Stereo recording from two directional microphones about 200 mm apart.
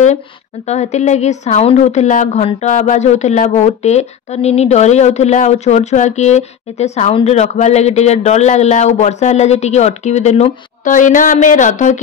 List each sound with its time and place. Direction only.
0.7 s a woman's voice: 35° left (ahead or behind)